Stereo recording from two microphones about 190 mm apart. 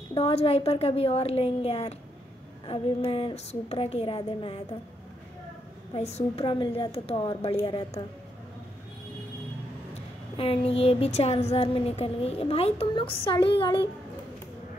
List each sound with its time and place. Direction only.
0.1 s a woman's voice: 30° left (ahead or behind)
5.9 s a woman's voice: 35° left (ahead or behind)
10.3 s a woman's voice: 30° left (ahead or behind)